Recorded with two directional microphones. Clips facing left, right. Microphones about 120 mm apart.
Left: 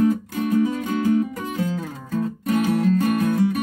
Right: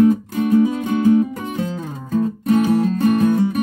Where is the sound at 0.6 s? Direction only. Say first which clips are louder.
Right 5 dB; 25° right (ahead or behind).